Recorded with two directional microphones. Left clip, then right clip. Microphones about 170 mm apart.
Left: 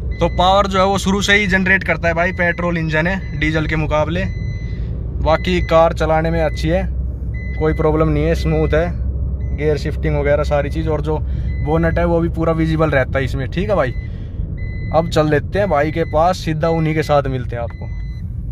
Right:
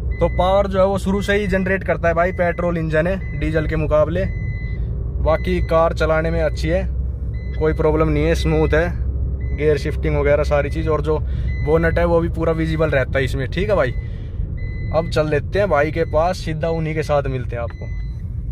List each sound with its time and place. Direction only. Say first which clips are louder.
0.2 s speech: left 3 dB; 5° right (ahead or behind)
5.2 s speech: left 3 dB; centre (ahead or behind)
14.9 s speech: left 4 dB; 20° left (ahead or behind)
15.5 s speech: left 1 dB; 5° left (ahead or behind)
16.4 s speech: left 5 dB; 25° left (ahead or behind)